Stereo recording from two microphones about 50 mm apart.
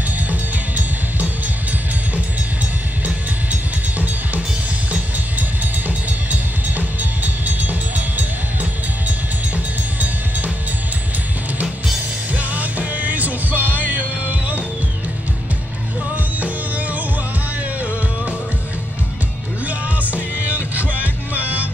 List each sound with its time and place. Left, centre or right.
0.3 s music: right
6.8 s music: right
12.4 s music: right
16.3 s music: right
20.0 s music: right